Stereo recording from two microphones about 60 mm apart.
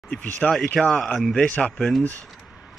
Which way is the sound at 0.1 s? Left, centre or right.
Centre.